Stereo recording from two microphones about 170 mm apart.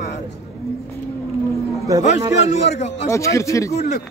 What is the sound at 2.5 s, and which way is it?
Speech, 40° left (ahead or behind).